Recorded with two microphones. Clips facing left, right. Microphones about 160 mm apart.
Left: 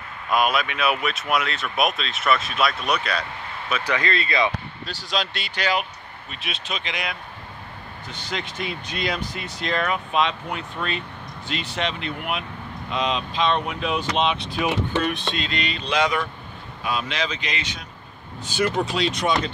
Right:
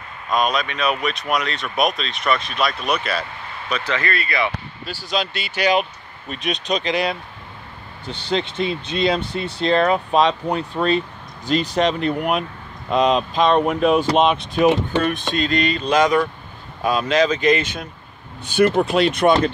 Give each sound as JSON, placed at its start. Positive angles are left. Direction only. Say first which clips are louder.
{"t": 0.3, "sound": "speech", "louder": "right 1 dB", "side_deg": 5}
{"t": 4.8, "sound": "speech", "louder": "right 4 dB", "side_deg": 0}
{"t": 6.3, "sound": "speech", "louder": "right 10 dB", "side_deg": -40}